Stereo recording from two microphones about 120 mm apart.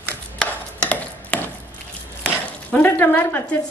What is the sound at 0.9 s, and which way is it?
Mechanisms, 15° left (ahead or behind).